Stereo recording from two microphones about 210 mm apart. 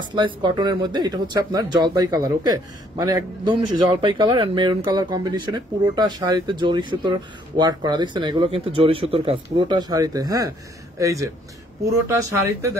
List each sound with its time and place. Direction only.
0.1 s speech: 20° right (ahead or behind)